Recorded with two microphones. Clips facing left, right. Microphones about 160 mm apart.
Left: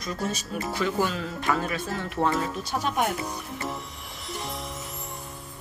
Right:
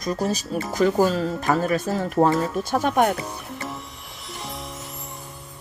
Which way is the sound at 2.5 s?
50° right (ahead or behind).